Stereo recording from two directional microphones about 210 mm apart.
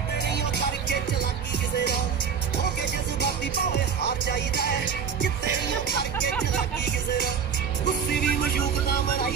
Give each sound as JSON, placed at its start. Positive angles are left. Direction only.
{"t": 0.3, "sound": "music", "side_deg": 55}
{"t": 3.2, "sound": "music", "side_deg": 55}
{"t": 6.8, "sound": "music", "side_deg": 55}